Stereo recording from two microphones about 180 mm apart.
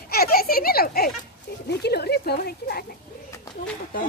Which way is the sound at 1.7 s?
65° left (ahead or behind).